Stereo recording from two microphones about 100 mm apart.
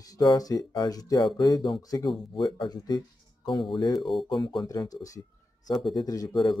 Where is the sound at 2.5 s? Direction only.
55° left (ahead or behind).